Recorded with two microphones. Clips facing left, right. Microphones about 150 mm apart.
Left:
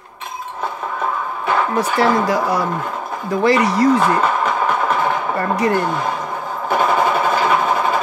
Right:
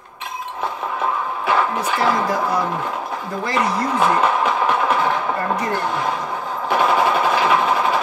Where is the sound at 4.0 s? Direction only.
5° right (ahead or behind).